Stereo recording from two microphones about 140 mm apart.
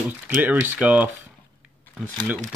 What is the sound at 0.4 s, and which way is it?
Speech, 15° right (ahead or behind).